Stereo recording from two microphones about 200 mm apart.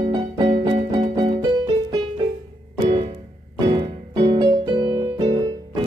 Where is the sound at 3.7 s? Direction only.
25° right (ahead or behind).